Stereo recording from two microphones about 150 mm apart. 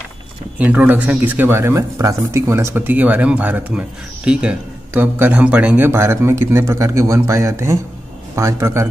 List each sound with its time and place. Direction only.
0.6 s speech: 10° right (ahead or behind)